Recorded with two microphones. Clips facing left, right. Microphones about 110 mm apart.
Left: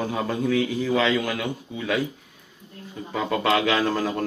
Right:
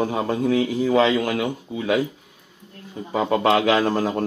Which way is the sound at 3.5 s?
45° right (ahead or behind).